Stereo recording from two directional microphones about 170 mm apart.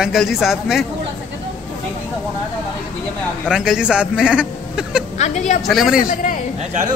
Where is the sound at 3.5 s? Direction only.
5° right (ahead or behind).